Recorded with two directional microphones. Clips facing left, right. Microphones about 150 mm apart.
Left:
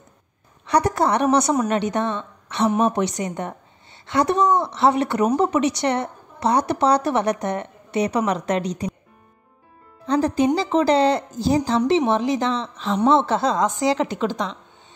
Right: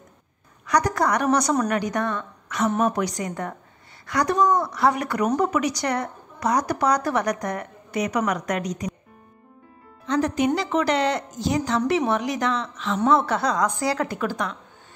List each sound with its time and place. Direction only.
0.7 s a woman's voice: 30° left (ahead or behind)
10.0 s a woman's voice: 30° left (ahead or behind)